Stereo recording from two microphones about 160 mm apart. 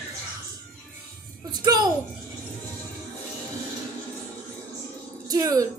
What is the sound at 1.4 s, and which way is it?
Music, 25° right (ahead or behind).